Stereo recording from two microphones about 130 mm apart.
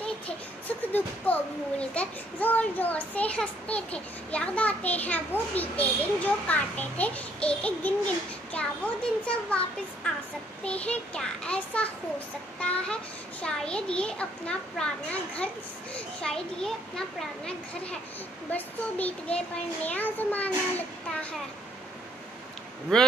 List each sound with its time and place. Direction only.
0.7 s a child's voice: 10° left (ahead or behind)
10.6 s a child's voice: 10° left (ahead or behind)
18.5 s a child's voice: 10° left (ahead or behind)